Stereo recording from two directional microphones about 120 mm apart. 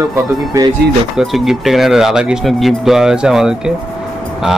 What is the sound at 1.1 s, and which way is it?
Speech, centre (ahead or behind).